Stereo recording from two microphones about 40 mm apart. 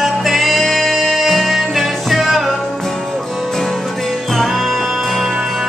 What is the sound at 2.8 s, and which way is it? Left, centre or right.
Music, centre.